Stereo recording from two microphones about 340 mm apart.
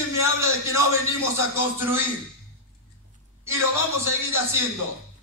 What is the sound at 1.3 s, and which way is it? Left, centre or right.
Speech, centre.